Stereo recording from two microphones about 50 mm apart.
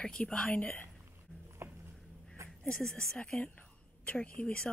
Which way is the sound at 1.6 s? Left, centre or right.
Right.